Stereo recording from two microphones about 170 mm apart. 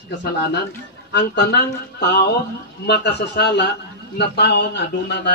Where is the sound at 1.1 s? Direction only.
80° left.